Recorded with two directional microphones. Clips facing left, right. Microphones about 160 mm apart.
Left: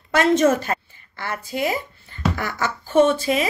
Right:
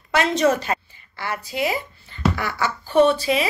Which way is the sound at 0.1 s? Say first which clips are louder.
Left 2 dB; 50° left (ahead or behind).